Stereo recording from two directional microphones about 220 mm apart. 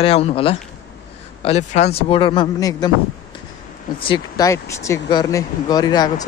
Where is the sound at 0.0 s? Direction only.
25° left (ahead or behind).